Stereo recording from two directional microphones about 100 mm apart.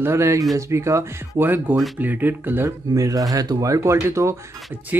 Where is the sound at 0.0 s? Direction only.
30° right (ahead or behind).